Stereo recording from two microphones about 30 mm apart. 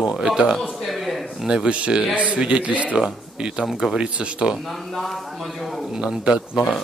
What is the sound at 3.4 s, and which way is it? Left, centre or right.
Speech, right.